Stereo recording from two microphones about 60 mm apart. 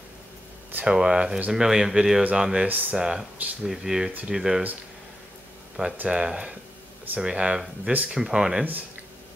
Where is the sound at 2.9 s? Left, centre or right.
Centre.